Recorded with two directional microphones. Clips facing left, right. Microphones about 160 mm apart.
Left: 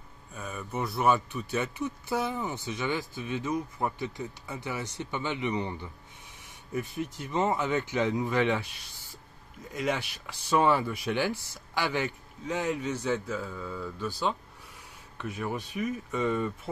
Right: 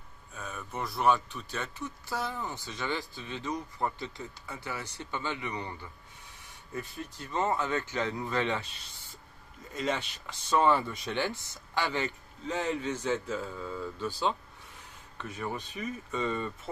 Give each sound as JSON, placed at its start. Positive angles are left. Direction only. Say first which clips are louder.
{"t": 0.3, "sound": "speech", "louder": "left 3 dB", "side_deg": 5}
{"t": 13.5, "sound": "speech", "louder": "even", "side_deg": -5}
{"t": 14.0, "sound": "speech", "louder": "even", "side_deg": 10}